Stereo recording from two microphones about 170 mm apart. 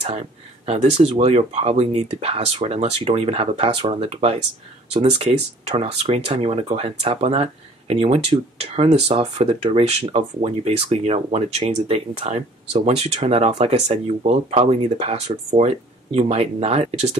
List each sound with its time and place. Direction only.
0.0 s speech: 35° right (ahead or behind)